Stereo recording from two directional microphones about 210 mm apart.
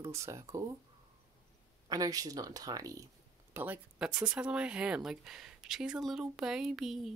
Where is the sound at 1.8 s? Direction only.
15° right (ahead or behind); by 7.1 s centre (ahead or behind).